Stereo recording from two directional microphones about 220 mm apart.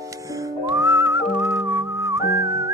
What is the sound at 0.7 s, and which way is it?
Whistling, 15° right (ahead or behind).